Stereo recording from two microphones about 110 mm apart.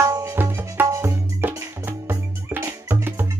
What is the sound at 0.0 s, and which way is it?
Music, 25° right (ahead or behind).